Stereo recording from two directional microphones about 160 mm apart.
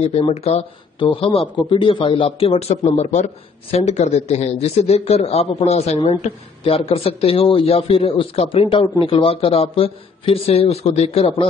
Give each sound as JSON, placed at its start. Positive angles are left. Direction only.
{"t": 0.0, "sound": "speech", "side_deg": 40}